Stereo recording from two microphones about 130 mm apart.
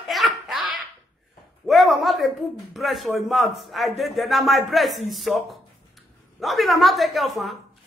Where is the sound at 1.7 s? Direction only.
Centre (ahead or behind).